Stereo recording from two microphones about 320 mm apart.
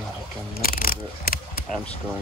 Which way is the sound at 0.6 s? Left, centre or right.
Left.